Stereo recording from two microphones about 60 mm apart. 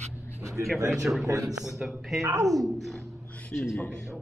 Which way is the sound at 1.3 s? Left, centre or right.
Right.